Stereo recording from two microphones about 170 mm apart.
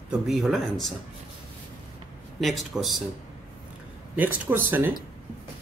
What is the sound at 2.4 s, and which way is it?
Speech, centre (ahead or behind).